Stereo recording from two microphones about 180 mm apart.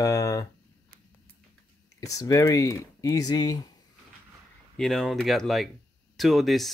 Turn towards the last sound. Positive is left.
turn(degrees=0)  # may be behind; listen again after turning